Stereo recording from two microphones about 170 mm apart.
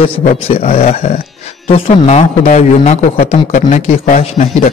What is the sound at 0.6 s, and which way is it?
A man's voice, 40° left (ahead or behind).